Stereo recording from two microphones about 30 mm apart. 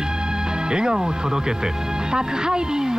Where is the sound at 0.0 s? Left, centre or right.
Right.